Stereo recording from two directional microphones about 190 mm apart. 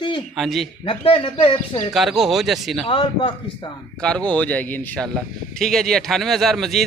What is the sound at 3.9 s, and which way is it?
Speech, 5° left (ahead or behind).